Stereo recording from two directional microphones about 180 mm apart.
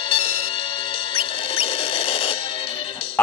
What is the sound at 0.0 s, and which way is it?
Music, 30° left (ahead or behind).